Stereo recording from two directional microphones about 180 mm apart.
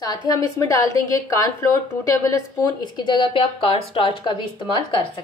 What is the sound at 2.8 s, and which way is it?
A woman's voice, 25° left (ahead or behind).